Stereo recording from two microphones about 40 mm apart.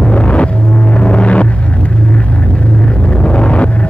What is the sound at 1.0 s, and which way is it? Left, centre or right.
Rumble, left.